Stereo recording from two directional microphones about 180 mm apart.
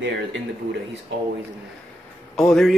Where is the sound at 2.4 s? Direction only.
5° left (ahead or behind).